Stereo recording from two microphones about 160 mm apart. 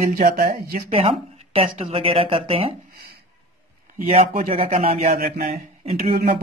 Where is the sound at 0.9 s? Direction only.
40° right (ahead or behind).